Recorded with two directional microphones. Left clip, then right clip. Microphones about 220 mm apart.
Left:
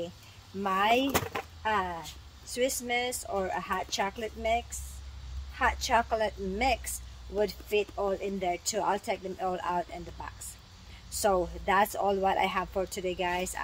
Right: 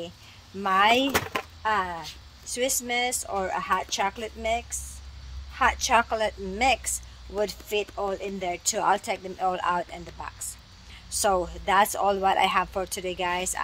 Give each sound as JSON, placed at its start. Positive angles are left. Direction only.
{"t": 0.6, "sound": "speech", "side_deg": -15}
{"t": 11.1, "sound": "speech", "side_deg": 0}